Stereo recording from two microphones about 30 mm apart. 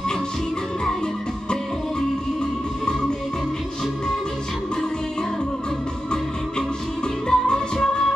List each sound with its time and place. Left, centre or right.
2.8 s music: left
7.2 s music: left